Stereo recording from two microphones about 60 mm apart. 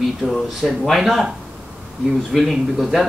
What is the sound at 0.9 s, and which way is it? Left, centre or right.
Speech, centre.